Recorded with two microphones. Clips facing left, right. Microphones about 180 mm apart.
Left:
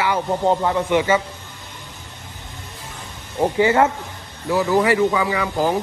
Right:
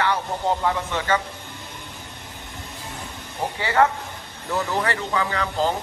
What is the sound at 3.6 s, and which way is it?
A man's voice, 20° left (ahead or behind).